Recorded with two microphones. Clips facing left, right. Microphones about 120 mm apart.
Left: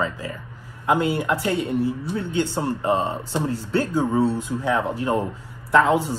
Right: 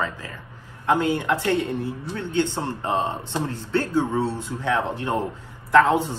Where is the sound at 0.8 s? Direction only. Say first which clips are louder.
Even; 10° left (ahead or behind).